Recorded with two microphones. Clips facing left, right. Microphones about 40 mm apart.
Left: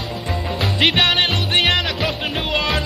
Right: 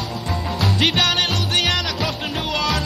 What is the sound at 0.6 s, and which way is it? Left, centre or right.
Music, left.